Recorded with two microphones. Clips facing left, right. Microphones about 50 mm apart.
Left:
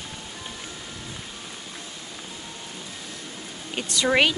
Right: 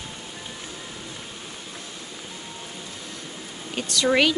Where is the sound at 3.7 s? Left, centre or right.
Centre.